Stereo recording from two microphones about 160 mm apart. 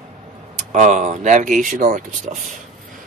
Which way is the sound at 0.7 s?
45° right (ahead or behind).